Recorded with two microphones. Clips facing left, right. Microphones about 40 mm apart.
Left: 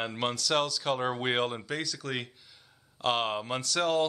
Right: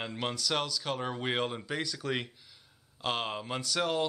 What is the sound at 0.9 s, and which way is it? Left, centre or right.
Speech, centre.